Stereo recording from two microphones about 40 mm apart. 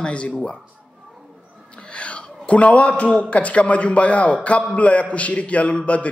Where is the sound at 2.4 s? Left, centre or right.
Left.